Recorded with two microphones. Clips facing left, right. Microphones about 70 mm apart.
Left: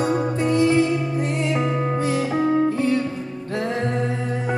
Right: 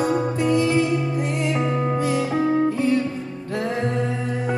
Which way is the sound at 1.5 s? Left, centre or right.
Centre.